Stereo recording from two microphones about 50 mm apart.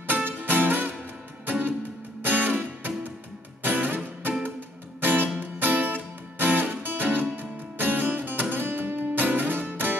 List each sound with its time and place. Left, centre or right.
0.4 s music: right